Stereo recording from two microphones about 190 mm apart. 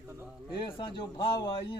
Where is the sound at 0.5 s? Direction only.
25° left (ahead or behind).